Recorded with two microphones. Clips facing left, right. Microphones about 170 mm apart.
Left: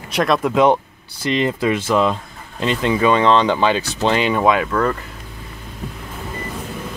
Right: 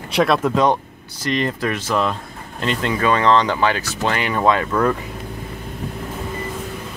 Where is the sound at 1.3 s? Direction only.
20° left (ahead or behind).